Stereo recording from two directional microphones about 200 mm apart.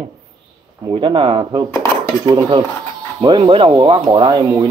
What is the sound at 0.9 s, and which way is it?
Speech, 25° right (ahead or behind).